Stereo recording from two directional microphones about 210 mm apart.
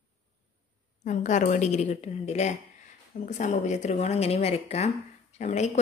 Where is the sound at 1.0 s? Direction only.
35° left (ahead or behind).